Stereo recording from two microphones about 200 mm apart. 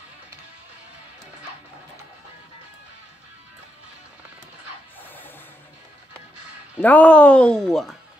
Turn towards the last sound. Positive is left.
turn(degrees=0)  # may be behind; listen again after turning